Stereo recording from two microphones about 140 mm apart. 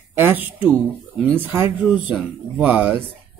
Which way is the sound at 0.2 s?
15° right (ahead or behind).